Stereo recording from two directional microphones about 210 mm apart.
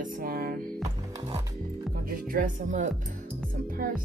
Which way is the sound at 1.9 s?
45° right (ahead or behind).